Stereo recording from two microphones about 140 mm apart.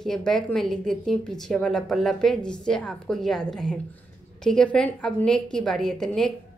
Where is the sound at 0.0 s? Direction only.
5° left (ahead or behind).